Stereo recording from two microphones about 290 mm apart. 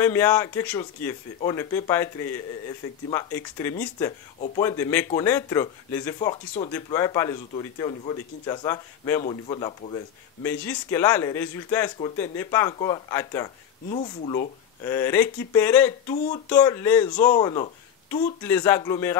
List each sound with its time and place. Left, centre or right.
0.0 s speech: centre
13.8 s speech: left